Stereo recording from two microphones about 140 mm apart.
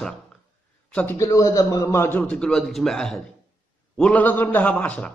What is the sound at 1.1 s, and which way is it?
Speech, 20° left (ahead or behind).